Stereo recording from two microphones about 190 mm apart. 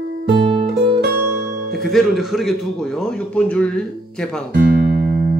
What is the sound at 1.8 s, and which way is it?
Speech, centre (ahead or behind).